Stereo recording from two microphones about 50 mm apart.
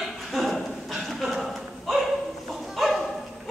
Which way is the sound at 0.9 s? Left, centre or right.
Centre.